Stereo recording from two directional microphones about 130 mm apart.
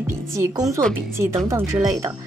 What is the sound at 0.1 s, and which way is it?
A woman's voice, 20° right (ahead or behind).